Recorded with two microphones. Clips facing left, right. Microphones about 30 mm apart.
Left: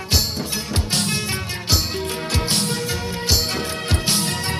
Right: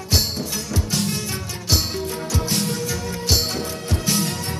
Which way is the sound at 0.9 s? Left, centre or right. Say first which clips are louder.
Left 2 dB; left.